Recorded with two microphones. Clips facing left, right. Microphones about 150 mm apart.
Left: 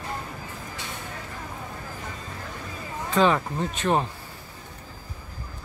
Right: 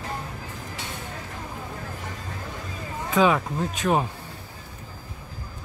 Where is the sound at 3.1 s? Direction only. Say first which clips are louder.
Right 1 dB; 5° right (ahead or behind).